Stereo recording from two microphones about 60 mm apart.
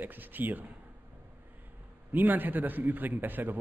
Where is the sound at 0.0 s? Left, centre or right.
Right.